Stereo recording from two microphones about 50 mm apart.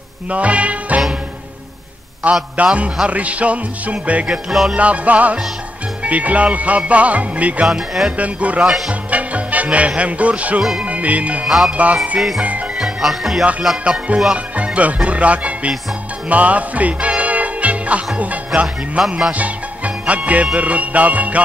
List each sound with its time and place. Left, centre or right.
0.3 s music: right
2.5 s music: right
4.3 s music: centre
4.7 s music: right
7.6 s speech: centre
8.2 s music: right
11.4 s speech: centre
11.7 s music: right
12.7 s music: centre
13.8 s music: right
14.3 s speech: right
16.3 s music: right
18.9 s music: centre
19.3 s music: right